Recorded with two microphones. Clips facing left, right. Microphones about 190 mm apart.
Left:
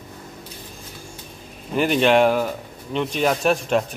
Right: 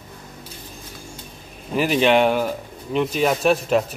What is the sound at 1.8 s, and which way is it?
Speech, centre (ahead or behind).